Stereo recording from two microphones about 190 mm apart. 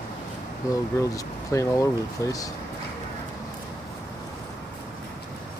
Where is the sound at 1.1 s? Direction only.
15° left (ahead or behind).